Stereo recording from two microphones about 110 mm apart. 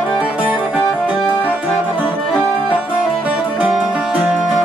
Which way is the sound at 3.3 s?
10° right (ahead or behind).